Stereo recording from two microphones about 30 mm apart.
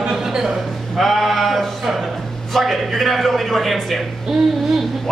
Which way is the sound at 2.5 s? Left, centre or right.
Centre.